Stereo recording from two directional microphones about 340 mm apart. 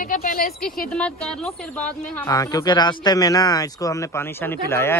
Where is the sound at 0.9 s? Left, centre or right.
Centre.